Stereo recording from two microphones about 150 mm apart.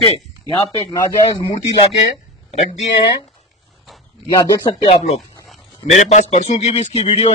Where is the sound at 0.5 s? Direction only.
25° left (ahead or behind).